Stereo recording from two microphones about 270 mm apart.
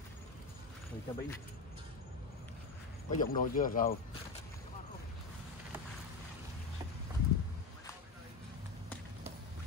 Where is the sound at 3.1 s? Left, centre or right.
Left.